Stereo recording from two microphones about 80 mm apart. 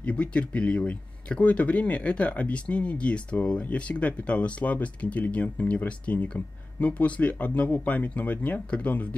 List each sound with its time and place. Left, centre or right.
0.0 s speech: centre